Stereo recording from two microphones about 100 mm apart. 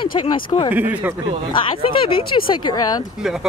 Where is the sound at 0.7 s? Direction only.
20° right (ahead or behind).